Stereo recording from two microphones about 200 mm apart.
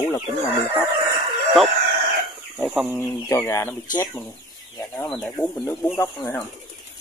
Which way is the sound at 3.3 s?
15° left (ahead or behind).